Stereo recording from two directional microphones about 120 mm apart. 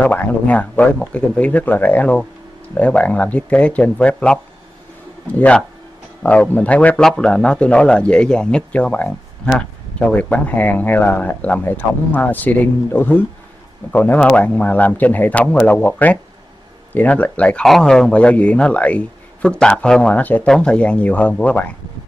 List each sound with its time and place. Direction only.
0.0 s a man's voice: 15° left (ahead or behind)
6.2 s a man's voice: 10° left (ahead or behind)
16.9 s a man's voice: 15° left (ahead or behind)